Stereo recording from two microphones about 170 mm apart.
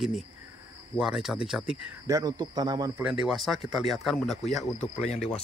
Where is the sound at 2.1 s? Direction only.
25° right (ahead or behind).